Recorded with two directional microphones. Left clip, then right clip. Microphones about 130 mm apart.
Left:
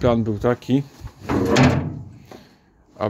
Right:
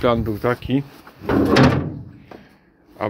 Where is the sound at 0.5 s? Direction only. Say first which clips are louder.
Left 1 dB; 70° left (ahead or behind).